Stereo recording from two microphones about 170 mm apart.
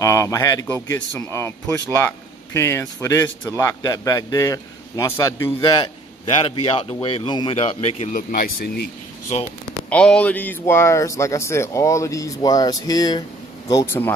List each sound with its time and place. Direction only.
0.0 s a man's voice: 20° left (ahead or behind); by 8.8 s 65° left (ahead or behind)
9.8 s a man's voice: 5° left (ahead or behind)